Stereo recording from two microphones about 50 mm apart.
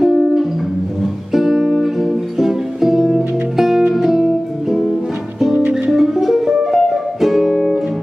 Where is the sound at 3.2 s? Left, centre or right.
Right.